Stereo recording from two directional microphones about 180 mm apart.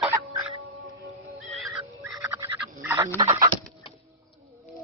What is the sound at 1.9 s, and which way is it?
Fowl, 15° right (ahead or behind).